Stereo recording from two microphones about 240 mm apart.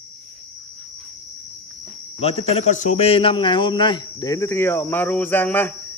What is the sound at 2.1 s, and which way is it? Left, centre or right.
A man's voice, left.